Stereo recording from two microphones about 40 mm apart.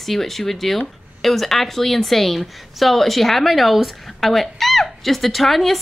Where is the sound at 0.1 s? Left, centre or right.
Centre.